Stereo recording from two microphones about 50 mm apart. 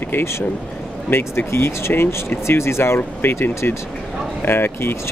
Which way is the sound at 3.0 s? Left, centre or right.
Left.